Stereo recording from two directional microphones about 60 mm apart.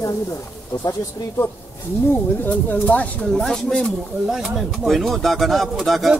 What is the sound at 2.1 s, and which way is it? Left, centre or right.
Speech, left.